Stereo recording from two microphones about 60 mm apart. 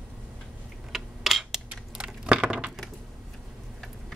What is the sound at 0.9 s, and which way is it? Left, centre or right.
Typing, centre.